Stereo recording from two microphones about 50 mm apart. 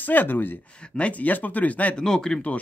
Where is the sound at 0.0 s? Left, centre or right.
Left.